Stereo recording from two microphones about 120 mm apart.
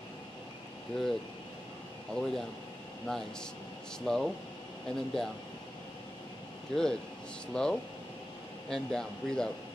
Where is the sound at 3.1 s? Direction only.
5° left (ahead or behind).